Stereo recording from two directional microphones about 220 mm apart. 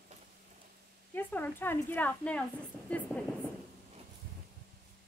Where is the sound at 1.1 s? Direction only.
10° left (ahead or behind).